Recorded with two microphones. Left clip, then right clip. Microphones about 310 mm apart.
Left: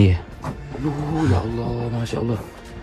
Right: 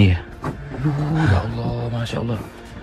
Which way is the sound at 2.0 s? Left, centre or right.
Left.